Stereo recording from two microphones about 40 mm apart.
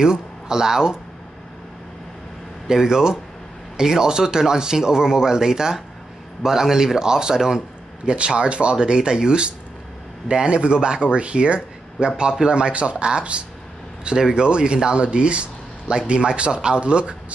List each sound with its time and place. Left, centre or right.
0.0 s speech: centre
2.7 s speech: centre
8.0 s speech: right